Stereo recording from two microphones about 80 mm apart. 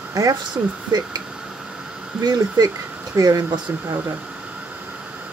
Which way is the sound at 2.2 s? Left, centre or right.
Right.